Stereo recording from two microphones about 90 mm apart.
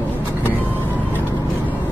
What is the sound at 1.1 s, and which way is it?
Vehicle, 20° left (ahead or behind).